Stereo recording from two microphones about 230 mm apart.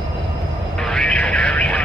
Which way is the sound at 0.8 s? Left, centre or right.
Centre.